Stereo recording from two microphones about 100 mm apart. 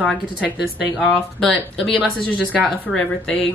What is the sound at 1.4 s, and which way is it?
A woman's voice, 10° left (ahead or behind).